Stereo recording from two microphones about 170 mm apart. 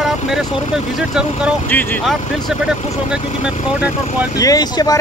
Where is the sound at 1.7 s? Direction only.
10° left (ahead or behind).